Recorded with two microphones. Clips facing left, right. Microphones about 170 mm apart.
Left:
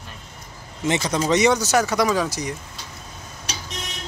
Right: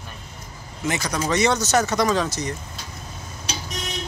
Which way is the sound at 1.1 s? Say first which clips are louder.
Left 3 dB; 15° left (ahead or behind).